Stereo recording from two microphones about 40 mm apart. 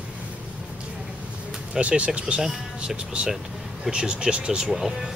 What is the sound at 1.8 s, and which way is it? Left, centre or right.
Speech, right.